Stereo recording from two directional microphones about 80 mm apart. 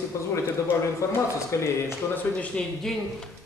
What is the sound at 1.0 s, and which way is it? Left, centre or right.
Speech, left.